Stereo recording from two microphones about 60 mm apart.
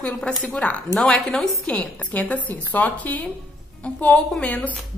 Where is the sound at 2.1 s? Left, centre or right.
Left.